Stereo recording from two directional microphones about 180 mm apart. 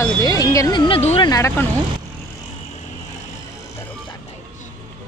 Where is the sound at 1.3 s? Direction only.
15° left (ahead or behind).